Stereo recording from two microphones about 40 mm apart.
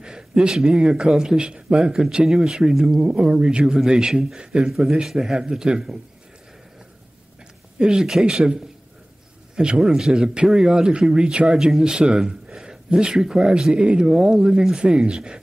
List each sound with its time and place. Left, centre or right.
0.0 s speech: right
5.0 s speech: centre
7.8 s speech: centre
14.1 s speech: centre